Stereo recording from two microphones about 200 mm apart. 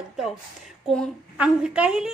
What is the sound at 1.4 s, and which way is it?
Speech, 5° right (ahead or behind).